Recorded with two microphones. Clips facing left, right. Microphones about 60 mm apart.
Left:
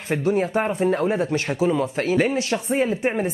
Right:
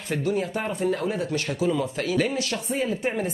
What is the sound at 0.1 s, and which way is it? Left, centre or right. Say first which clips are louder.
Speech: left 5 dB; left.